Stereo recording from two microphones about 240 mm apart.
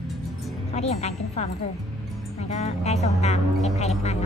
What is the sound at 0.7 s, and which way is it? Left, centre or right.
Speech, left.